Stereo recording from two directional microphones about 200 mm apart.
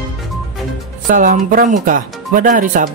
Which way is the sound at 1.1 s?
40° right (ahead or behind).